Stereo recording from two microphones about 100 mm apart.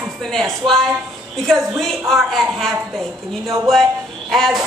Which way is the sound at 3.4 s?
30° right (ahead or behind).